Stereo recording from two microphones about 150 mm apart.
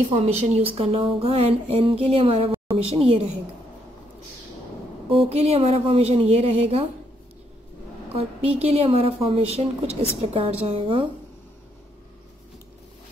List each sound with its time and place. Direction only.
0.1 s speech: 45° right (ahead or behind)
5.1 s speech: 40° right (ahead or behind)
8.1 s speech: 40° right (ahead or behind)